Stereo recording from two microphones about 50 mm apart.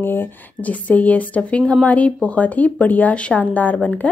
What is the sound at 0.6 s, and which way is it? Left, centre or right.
A woman's voice, left.